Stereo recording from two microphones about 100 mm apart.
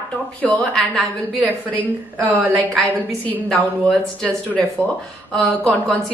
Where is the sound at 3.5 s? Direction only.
10° left (ahead or behind).